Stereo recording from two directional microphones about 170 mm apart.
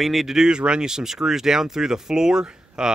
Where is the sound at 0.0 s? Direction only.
Centre (ahead or behind).